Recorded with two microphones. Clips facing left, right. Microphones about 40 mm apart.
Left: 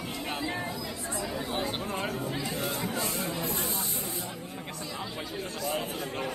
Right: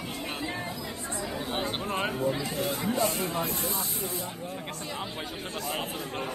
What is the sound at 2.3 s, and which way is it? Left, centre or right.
Speech, centre.